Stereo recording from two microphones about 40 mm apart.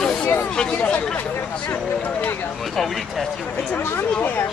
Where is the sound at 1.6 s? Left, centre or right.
Left.